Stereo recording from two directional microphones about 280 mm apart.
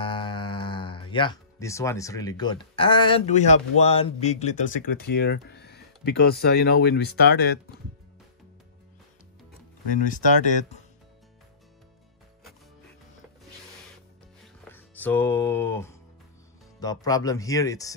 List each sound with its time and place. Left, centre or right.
0.0 s speech: centre; by 7.6 s left
10.0 s speech: left
14.6 s music: centre
16.8 s speech: centre